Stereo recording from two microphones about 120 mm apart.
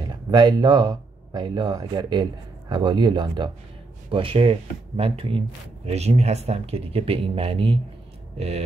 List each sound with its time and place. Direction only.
0.1 s speech: 35° right (ahead or behind); by 5.4 s 50° right (ahead or behind)
5.9 s speech: 65° right (ahead or behind)